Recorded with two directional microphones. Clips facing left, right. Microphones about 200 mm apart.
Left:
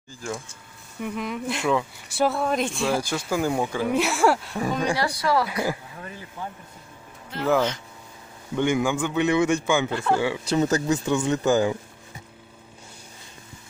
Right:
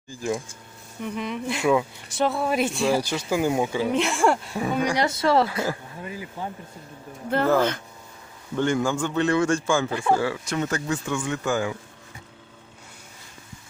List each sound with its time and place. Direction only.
0.1 s speech: 15° right (ahead or behind)
1.0 s speech: centre (ahead or behind)
3.9 s speech: 5° left (ahead or behind)
4.9 s speech: 20° right (ahead or behind)
7.2 s speech: 55° right (ahead or behind)
8.5 s a man's voice: 15° left (ahead or behind)
9.8 s speech: 10° right (ahead or behind)
10.2 s speech: 20° left (ahead or behind)